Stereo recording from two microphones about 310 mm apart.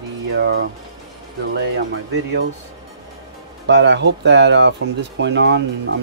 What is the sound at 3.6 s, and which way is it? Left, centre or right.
Speech, right.